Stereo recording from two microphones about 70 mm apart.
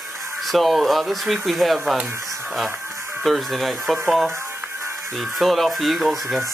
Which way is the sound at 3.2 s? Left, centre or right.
Centre.